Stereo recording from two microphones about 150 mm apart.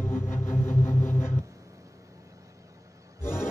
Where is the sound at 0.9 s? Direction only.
15° left (ahead or behind).